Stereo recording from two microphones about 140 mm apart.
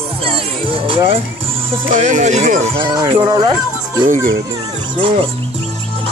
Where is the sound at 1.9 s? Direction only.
65° right (ahead or behind).